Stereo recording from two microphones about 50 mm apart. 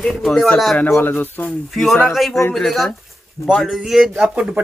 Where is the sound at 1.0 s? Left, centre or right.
Left.